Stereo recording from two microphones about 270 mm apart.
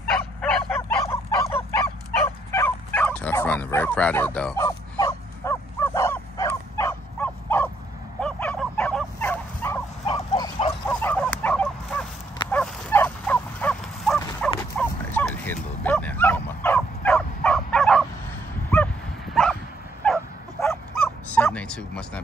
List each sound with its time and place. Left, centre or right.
0.1 s a sound: centre
2.2 s bow-wow: centre
8.2 s fowl: centre
10.0 s goose: centre
12.4 s dog: centre
14.8 s bow-wow: centre
18.7 s dog: centre
20.0 s bow-wow: centre